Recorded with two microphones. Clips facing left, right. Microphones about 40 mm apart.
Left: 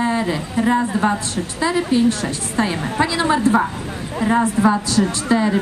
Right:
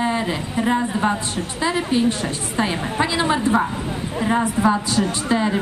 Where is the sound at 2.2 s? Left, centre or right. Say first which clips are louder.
Left 2 dB; right.